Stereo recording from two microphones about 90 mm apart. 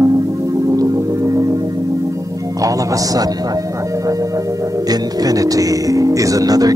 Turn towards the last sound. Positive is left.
turn(degrees=-45)  # may be behind; listen again after turning